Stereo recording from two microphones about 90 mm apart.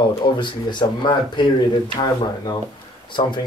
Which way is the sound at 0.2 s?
60° left (ahead or behind).